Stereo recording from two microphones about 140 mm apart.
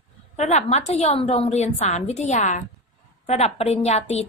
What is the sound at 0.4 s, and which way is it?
A woman's voice, 55° left (ahead or behind).